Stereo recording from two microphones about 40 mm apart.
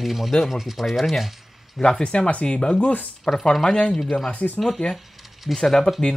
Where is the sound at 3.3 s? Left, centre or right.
Centre.